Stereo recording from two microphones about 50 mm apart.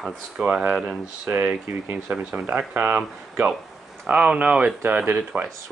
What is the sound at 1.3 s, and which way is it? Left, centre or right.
Speech, right.